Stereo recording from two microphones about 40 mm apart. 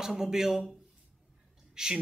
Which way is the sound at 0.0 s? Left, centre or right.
Centre.